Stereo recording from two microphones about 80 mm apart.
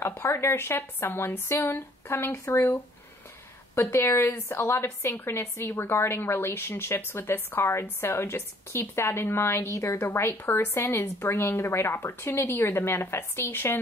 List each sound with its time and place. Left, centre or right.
0.0 s a woman's voice: left